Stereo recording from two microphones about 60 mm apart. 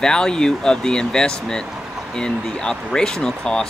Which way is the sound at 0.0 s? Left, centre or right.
Centre.